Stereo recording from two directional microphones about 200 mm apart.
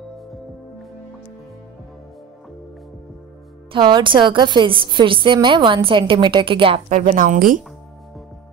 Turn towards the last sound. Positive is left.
turn(degrees=-40)  # may be behind; listen again after turning